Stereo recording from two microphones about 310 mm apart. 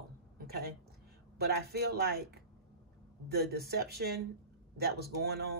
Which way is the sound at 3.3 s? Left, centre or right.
Right.